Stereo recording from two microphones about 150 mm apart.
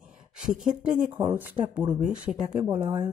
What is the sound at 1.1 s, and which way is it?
Speech, 15° right (ahead or behind).